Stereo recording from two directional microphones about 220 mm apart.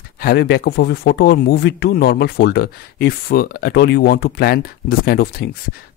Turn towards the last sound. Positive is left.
turn(degrees=45)  # may be behind; listen again after turning